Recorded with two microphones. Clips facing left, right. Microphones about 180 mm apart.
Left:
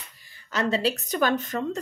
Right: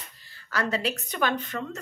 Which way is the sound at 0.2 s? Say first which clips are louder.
Left 3 dB; 15° left (ahead or behind).